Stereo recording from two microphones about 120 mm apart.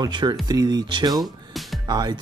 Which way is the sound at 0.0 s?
40° right (ahead or behind).